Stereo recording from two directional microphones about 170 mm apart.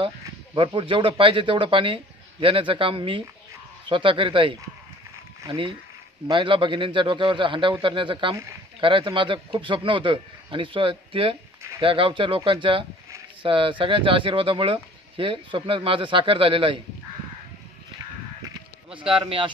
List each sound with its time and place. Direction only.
0.6 s a man's voice: 30° right (ahead or behind)
6.3 s a man's voice: 30° right (ahead or behind)
18.9 s speech: 30° right (ahead or behind)